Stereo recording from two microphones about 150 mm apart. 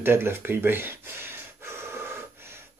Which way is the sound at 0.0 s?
15° right (ahead or behind).